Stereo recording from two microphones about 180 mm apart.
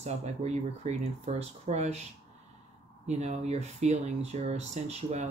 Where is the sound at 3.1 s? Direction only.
35° right (ahead or behind).